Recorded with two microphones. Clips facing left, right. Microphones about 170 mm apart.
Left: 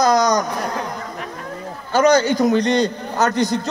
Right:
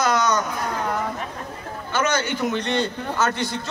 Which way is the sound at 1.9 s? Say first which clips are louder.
Left 9 dB; 35° left (ahead or behind).